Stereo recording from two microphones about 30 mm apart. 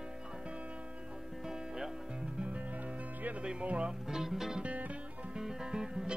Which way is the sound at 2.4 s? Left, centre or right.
Right.